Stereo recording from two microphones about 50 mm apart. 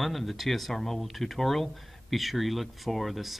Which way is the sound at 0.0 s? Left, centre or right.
Centre.